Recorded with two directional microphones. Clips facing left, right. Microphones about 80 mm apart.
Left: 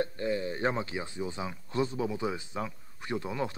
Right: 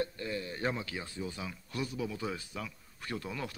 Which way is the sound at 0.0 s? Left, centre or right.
Left.